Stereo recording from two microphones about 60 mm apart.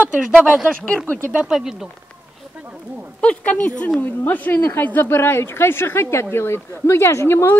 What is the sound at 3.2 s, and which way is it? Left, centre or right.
A woman's voice, left.